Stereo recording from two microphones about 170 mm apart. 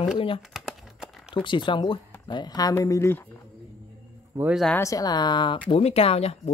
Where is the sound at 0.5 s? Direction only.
5° right (ahead or behind).